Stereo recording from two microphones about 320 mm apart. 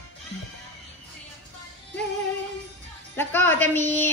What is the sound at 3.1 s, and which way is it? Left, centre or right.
Speech, centre.